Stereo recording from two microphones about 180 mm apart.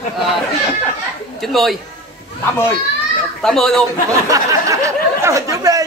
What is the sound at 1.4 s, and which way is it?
Speech, centre (ahead or behind).